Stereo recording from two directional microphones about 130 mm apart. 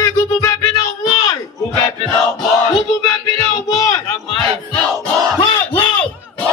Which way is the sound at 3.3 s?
25° left (ahead or behind).